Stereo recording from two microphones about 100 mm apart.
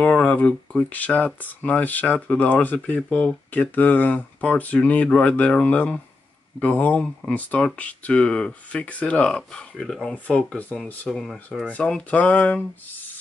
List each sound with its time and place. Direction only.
0.0 s speech: 15° left (ahead or behind)